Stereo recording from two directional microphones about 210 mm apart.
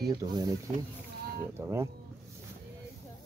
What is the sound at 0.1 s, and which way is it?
Speech, 20° right (ahead or behind).